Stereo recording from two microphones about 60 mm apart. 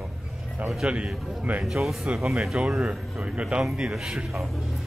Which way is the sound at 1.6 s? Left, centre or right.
Centre.